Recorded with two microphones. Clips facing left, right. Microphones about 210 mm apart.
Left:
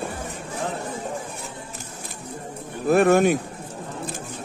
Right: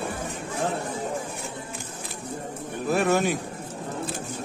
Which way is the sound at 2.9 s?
55° left (ahead or behind).